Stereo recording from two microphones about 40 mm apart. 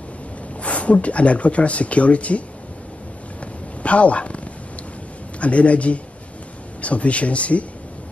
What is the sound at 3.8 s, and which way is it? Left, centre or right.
A man's voice, left.